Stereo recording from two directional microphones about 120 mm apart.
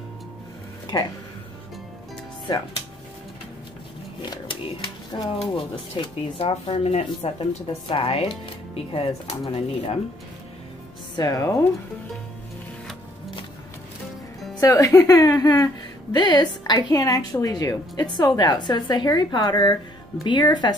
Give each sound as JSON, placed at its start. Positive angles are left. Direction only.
{"t": 4.2, "sound": "speech", "side_deg": 40}
{"t": 7.2, "sound": "speech", "side_deg": 45}
{"t": 11.1, "sound": "speech", "side_deg": 30}
{"t": 14.6, "sound": "a woman's voice", "side_deg": 25}